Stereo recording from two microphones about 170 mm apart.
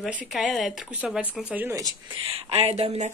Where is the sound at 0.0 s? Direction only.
5° right (ahead or behind).